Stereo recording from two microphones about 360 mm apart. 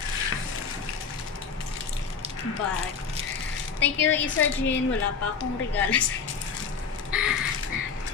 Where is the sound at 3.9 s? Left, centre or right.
Left.